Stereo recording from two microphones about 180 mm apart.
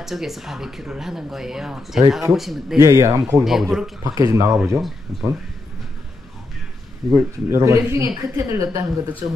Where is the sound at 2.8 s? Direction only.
15° right (ahead or behind).